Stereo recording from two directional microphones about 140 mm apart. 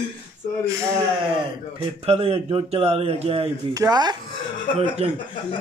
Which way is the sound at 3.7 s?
25° right (ahead or behind).